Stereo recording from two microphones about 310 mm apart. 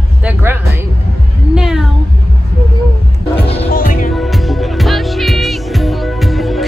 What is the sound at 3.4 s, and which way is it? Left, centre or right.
Music, centre.